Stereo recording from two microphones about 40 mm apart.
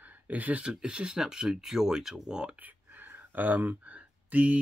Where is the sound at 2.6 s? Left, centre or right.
Right.